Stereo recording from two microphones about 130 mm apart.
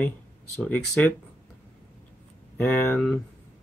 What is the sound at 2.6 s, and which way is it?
Speech, 15° left (ahead or behind).